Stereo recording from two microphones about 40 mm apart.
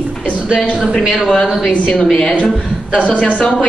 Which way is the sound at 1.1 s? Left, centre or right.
Centre.